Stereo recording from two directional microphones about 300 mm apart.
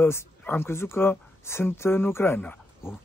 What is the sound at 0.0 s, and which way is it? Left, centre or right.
A man's voice, centre.